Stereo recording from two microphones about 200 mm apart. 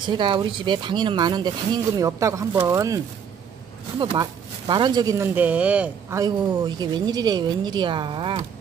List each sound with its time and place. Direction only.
0.0 s speech: 20° right (ahead or behind)
4.0 s speech: 25° right (ahead or behind)